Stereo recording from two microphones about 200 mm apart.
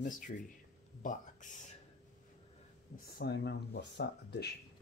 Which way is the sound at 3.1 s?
55° left (ahead or behind).